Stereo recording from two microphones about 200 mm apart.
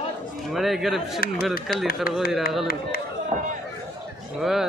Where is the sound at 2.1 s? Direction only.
45° left (ahead or behind).